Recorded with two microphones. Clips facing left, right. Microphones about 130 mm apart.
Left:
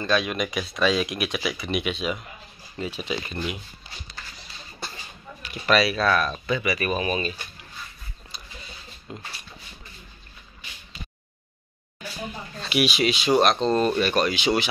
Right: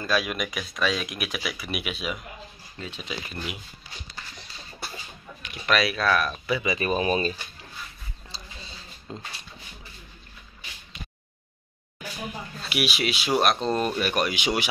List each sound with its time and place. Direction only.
0.0 s speech: 5° right (ahead or behind)
5.4 s speech: centre (ahead or behind)
6.6 s speech: 25° right (ahead or behind)
8.3 s a sound: 30° right (ahead or behind)
9.1 s speech: 30° right (ahead or behind)
12.0 s speech: 5° right (ahead or behind)